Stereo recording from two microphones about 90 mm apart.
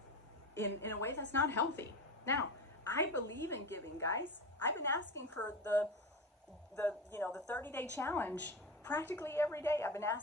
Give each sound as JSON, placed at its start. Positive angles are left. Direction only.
{"t": 0.6, "sound": "a woman's voice", "side_deg": 25}